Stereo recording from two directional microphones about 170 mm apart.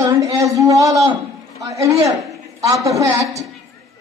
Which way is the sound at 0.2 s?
20° right (ahead or behind).